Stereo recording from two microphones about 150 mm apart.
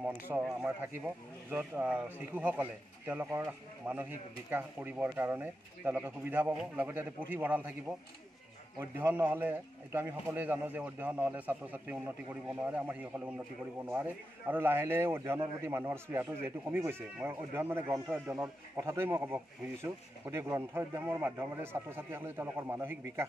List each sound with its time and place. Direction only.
0.3 s speech: 5° right (ahead or behind)
8.9 s speech: 15° right (ahead or behind)